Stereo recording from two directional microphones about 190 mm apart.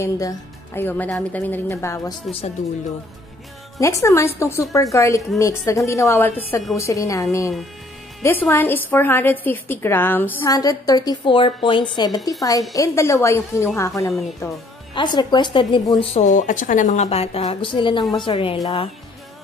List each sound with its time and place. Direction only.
0.0 s a woman's voice: 15° left (ahead or behind)
3.8 s a woman's voice: 15° left (ahead or behind)